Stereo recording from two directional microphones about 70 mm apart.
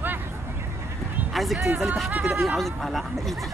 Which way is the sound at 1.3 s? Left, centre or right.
Centre.